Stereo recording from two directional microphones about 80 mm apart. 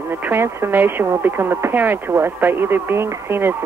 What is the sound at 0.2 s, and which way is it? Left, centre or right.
Speech, right.